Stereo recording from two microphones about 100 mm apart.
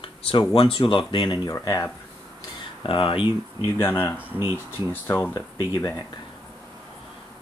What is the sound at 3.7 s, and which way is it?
Speech, 20° left (ahead or behind).